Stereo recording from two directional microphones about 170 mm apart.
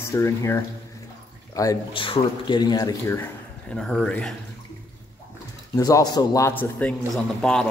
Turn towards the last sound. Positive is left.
turn(degrees=5)  # may be behind; listen again after turning